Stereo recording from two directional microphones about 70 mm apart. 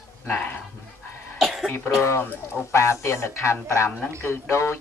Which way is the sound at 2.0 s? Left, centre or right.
Left.